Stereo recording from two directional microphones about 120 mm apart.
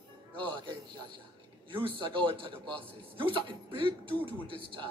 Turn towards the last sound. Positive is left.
turn(degrees=-45)  # may be behind; listen again after turning